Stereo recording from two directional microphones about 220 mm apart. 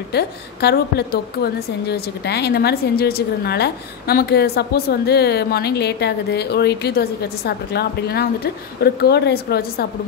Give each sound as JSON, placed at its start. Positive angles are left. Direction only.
{"t": 0.1, "sound": "a woman's voice", "side_deg": 50}